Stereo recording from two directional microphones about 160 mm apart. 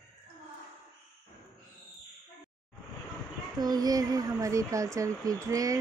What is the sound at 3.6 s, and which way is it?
Speech, 25° right (ahead or behind).